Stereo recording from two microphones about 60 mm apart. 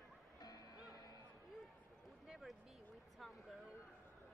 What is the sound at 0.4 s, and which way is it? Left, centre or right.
Music, left.